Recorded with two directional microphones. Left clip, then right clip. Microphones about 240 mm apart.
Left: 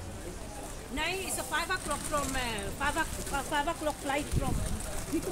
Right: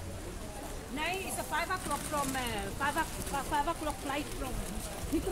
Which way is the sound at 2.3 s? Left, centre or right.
Left.